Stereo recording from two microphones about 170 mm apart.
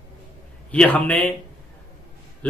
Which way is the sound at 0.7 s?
10° left (ahead or behind).